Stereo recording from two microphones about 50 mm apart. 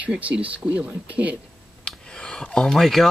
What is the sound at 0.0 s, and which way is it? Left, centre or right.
Speech, right.